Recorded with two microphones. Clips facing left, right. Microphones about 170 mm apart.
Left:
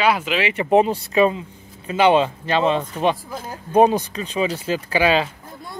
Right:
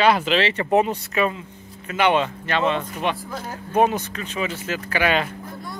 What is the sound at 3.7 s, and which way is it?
Speech, 30° left (ahead or behind).